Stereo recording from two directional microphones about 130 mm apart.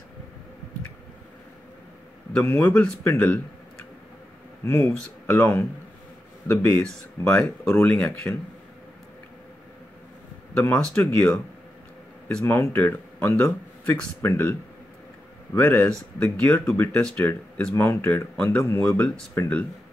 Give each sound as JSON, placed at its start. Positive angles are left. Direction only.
{"t": 2.3, "sound": "speech", "side_deg": 15}
{"t": 10.5, "sound": "speech", "side_deg": 10}
{"t": 12.4, "sound": "speech", "side_deg": 20}